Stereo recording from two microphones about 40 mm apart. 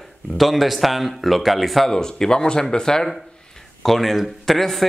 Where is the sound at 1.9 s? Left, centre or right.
Centre.